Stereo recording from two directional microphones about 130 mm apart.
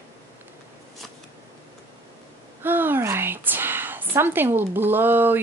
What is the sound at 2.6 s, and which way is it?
A woman's voice, 15° right (ahead or behind).